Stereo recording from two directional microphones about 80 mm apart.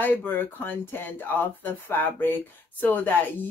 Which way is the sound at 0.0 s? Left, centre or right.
Left.